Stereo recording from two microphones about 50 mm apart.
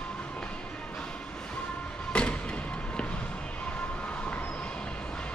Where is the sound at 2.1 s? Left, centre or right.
Left.